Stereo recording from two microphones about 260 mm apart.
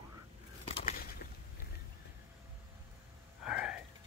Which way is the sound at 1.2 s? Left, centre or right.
Left.